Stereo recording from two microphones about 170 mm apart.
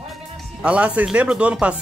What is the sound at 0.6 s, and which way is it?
Speech, 5° right (ahead or behind).